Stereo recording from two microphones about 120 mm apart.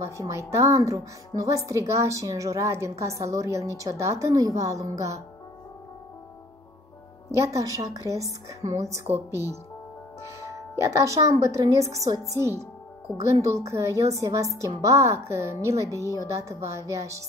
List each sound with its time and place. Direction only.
0.0 s speech: 25° right (ahead or behind)
7.3 s speech: 25° right (ahead or behind)